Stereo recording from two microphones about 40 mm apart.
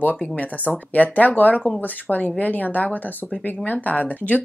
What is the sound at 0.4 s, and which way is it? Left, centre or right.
Speech, left.